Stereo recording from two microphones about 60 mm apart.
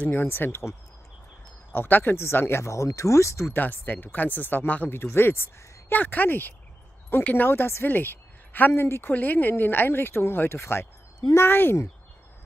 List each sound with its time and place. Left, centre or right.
0.1 s speech: left
1.7 s speech: left
3.5 s a woman's voice: left
8.7 s speech: left
9.1 s speech: left